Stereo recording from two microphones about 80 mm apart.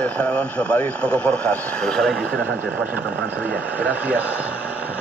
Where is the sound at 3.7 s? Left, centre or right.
Centre.